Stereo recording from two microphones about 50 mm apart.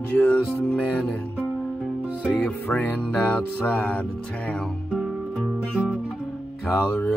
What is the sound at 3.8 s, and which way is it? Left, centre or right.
Music, left.